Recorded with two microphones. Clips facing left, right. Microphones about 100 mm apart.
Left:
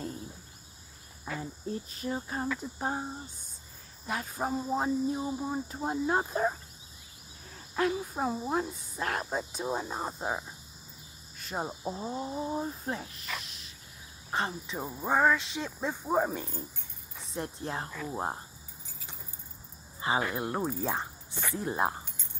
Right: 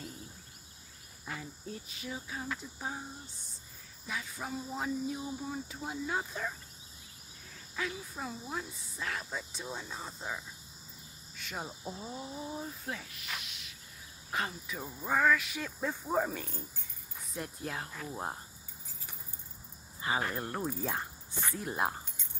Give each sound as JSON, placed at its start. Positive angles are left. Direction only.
{"t": 1.4, "sound": "speech", "side_deg": 35}
{"t": 17.3, "sound": "speech", "side_deg": 30}
{"t": 20.2, "sound": "speech", "side_deg": 15}